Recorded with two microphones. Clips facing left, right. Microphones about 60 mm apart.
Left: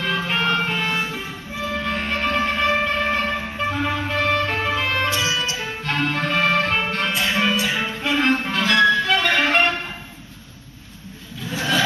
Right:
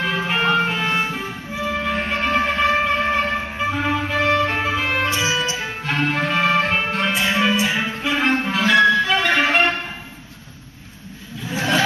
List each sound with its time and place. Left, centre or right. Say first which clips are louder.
0.0 s music: right 2 dB; centre
1.0 s music: right 3 dB; right
1.6 s music: right 2 dB; centre
5.9 s music: right 2 dB; centre
7.1 s music: right 3 dB; centre
8.0 s music: left 1 dB; centre
8.6 s music: right 2 dB; right
9.0 s music: right 1 dB; centre
11.5 s a sound: right 2 dB; right